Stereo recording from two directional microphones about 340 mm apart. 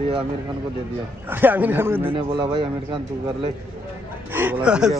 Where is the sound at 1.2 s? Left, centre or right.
Centre.